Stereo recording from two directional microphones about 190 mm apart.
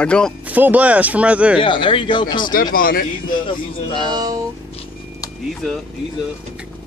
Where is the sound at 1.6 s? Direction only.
25° left (ahead or behind).